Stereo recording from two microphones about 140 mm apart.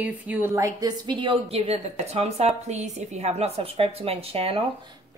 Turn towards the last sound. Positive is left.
turn(degrees=-45)  # may be behind; listen again after turning